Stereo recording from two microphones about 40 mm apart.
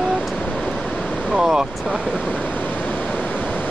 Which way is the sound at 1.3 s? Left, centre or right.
Centre.